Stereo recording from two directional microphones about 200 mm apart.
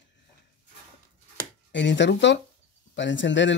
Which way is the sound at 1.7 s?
65° left (ahead or behind).